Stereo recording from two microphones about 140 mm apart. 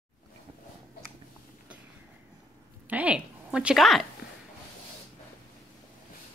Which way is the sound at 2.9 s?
10° right (ahead or behind).